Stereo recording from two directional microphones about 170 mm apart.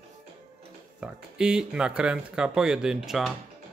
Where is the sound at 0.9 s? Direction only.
5° right (ahead or behind).